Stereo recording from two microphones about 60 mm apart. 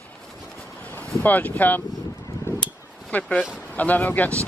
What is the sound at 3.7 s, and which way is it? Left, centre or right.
Speech, left.